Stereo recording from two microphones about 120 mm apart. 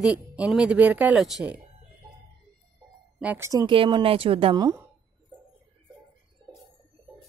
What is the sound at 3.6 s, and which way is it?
Speech, 45° right (ahead or behind).